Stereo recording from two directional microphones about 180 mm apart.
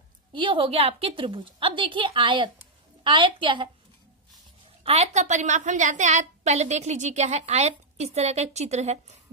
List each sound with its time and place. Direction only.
0.3 s a woman's voice: 30° right (ahead or behind)
4.8 s a woman's voice: 35° right (ahead or behind)